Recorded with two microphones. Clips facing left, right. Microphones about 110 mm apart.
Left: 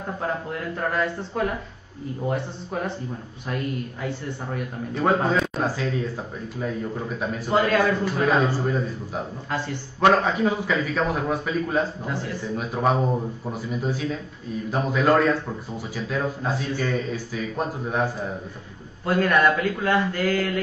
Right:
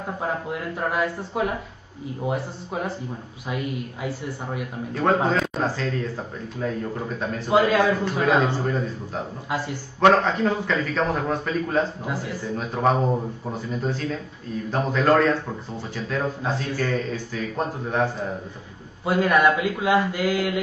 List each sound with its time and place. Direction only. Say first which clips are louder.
0.0 s a man's voice: even; 10° right (ahead or behind)
5.3 s a sound: even; centre (ahead or behind)
5.8 s a man's voice: even; 5° left (ahead or behind)
7.5 s a man's voice: right 2 dB; 5° right (ahead or behind)
8.3 s speech: right 2 dB; 20° right (ahead or behind)
8.5 s a man's voice: even; 5° left (ahead or behind)
9.5 s speech: right 1 dB; 10° right (ahead or behind)
9.9 s a man's voice: right 1 dB; 5° left (ahead or behind)
12.0 s speech: even; 10° right (ahead or behind)
12.5 s a man's voice: right 1 dB; 5° left (ahead or behind)
16.4 s a man's voice: even; 5° left (ahead or behind)
19.0 s speech: right 1 dB; 10° right (ahead or behind)